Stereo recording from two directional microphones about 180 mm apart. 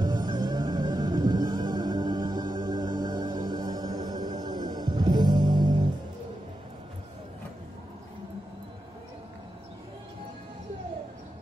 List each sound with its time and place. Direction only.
0.0 s music: 25° right (ahead or behind)